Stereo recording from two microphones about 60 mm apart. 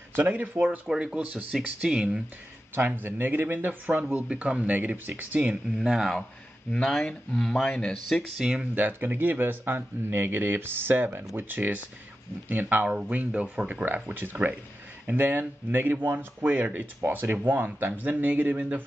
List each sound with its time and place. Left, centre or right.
0.7 s speech: centre
1.5 s speech: centre
2.7 s speech: right
5.8 s speech: centre
7.9 s speech: centre
8.7 s speech: right